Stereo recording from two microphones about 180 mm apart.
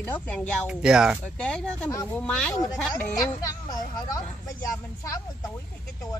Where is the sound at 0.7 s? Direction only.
5° right (ahead or behind).